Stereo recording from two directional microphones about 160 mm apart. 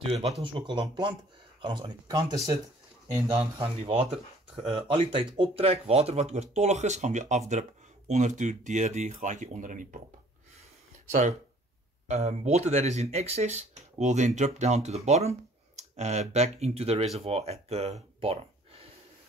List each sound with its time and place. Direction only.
0.1 s speech: 35° right (ahead or behind)
3.8 s speech: 40° right (ahead or behind)
11.1 s speech: 50° right (ahead or behind)